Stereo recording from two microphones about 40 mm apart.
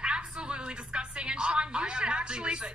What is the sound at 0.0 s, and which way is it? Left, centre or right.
A woman's voice, right.